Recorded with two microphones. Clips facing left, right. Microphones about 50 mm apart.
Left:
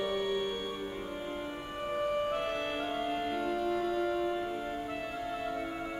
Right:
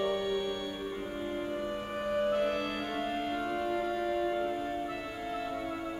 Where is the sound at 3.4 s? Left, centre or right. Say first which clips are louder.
Left 1 dB; centre.